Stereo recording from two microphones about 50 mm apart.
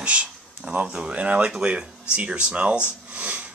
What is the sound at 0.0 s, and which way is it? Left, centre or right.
Speech, right.